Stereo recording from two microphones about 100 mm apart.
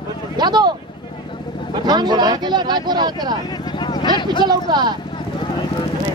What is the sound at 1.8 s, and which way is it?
Speech, 45° right (ahead or behind).